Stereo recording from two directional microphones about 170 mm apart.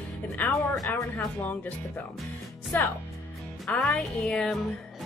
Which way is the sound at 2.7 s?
10° left (ahead or behind).